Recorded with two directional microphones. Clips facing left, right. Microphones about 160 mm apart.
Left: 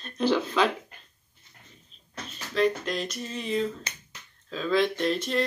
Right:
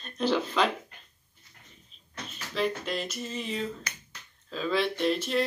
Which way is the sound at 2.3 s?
5° right (ahead or behind).